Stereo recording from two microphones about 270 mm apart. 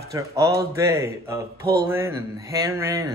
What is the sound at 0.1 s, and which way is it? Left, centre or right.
A man's voice, centre.